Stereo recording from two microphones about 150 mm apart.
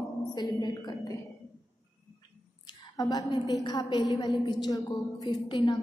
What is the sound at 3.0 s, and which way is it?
A woman's voice, 25° left (ahead or behind).